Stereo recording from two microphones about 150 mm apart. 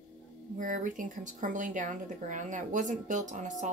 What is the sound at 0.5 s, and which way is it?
Speech, 60° right (ahead or behind).